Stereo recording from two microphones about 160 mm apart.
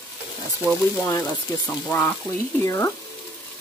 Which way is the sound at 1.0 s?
20° left (ahead or behind).